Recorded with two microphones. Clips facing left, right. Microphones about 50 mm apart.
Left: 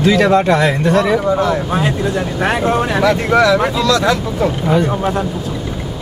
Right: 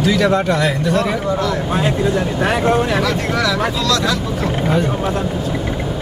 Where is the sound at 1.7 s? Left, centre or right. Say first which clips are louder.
Even; centre.